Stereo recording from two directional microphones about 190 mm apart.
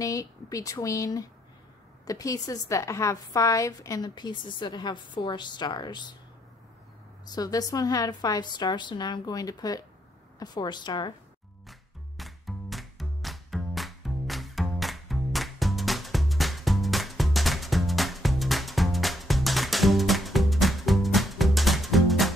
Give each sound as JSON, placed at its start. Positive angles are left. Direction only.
{"t": 0.0, "sound": "a woman's voice", "side_deg": 15}
{"t": 7.3, "sound": "a woman's voice", "side_deg": 20}
{"t": 12.2, "sound": "music", "side_deg": 0}